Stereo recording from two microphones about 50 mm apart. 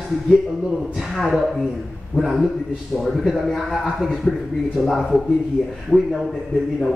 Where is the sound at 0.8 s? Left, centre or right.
Centre.